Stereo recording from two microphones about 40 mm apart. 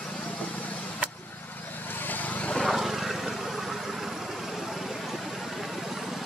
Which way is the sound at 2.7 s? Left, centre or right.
Centre.